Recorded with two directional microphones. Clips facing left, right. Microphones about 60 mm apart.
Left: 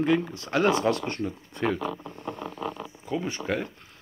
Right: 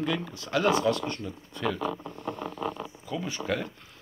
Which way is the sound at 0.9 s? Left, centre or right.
Left.